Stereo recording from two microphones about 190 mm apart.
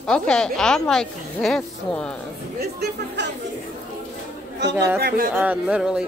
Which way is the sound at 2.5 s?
60° right (ahead or behind).